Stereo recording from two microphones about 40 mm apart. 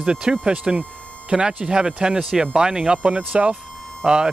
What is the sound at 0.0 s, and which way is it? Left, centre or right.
Speech, right.